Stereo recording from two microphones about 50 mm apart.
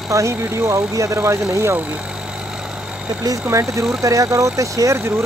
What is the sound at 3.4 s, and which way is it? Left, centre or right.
Speech, right.